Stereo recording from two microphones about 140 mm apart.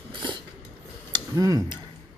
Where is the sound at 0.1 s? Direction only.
35° right (ahead or behind).